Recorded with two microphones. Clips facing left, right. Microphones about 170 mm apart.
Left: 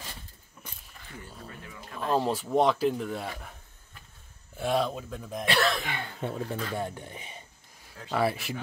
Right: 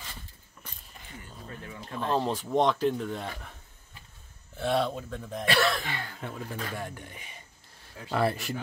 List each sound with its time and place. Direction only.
2.0 s speech: 5° left (ahead or behind)
4.6 s speech: 10° left (ahead or behind)
5.9 s speech: 20° left (ahead or behind)
8.1 s speech: centre (ahead or behind)